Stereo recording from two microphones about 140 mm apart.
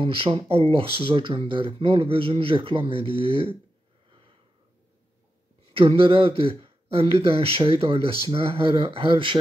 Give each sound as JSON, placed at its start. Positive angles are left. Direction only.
{"t": 0.0, "sound": "speech", "side_deg": -40}
{"t": 5.7, "sound": "speech", "side_deg": -40}